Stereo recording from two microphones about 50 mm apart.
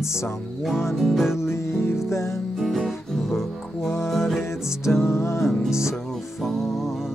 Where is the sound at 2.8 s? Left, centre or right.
Centre.